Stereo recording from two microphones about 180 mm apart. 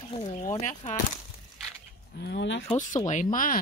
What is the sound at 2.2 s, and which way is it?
Speech, 75° left (ahead or behind).